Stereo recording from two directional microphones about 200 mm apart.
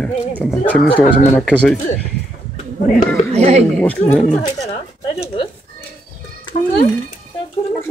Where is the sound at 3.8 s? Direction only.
10° left (ahead or behind).